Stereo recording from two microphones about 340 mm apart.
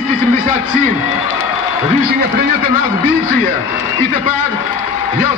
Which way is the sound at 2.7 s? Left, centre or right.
Left.